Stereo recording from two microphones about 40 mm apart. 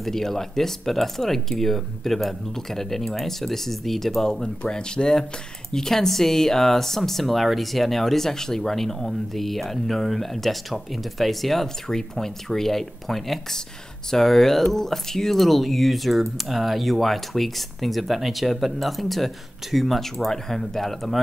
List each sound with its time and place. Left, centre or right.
0.0 s a woman's voice: centre
4.6 s a woman's voice: centre